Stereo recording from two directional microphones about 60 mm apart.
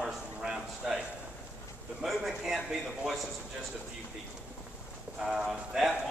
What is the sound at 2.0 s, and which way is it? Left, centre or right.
Speech, centre.